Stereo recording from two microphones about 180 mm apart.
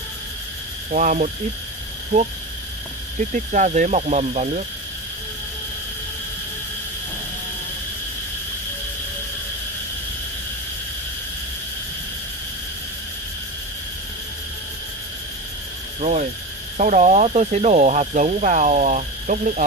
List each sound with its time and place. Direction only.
0.9 s speech: 45° right (ahead or behind)
3.3 s speech: 45° right (ahead or behind)
16.0 s speech: 40° right (ahead or behind)